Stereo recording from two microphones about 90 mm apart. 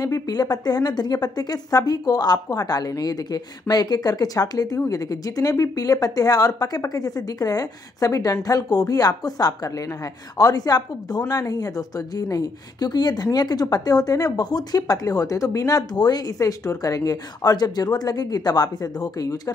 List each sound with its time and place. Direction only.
0.0 s a woman's voice: 45° left (ahead or behind)